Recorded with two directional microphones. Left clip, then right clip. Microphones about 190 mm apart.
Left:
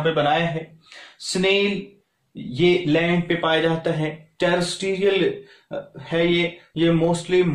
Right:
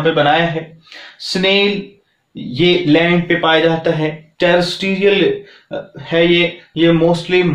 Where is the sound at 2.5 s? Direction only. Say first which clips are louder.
Right 6 dB; 25° left (ahead or behind).